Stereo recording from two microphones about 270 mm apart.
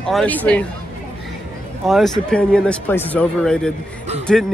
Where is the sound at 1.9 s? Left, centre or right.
Centre.